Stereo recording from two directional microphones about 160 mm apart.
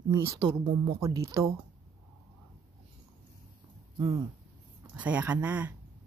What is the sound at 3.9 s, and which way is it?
Speech, 20° right (ahead or behind).